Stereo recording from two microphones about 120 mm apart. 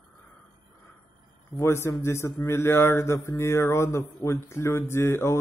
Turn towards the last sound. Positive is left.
turn(degrees=20)  # may be behind; listen again after turning